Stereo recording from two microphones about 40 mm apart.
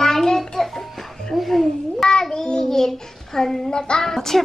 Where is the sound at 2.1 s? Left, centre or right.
Centre.